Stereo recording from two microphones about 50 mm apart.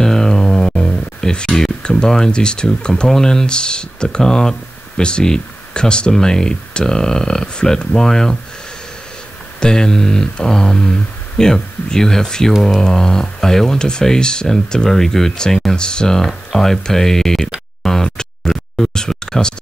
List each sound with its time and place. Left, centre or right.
0.0 s music: centre
1.5 s speech: centre
9.6 s speech: centre
17.8 s a sound: centre